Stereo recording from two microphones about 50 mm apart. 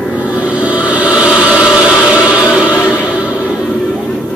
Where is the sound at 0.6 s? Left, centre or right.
Right.